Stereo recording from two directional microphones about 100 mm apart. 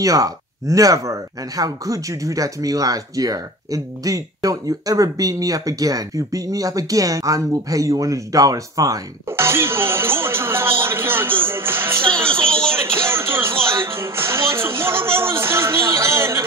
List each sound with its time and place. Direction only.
0.0 s speech: 35° right (ahead or behind)
12.7 s music: 25° right (ahead or behind)